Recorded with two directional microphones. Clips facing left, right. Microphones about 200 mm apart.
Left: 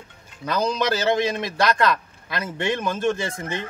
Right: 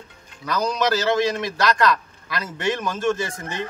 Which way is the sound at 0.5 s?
25° left (ahead or behind).